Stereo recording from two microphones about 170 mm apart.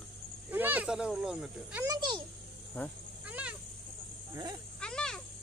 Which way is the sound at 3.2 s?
5° right (ahead or behind).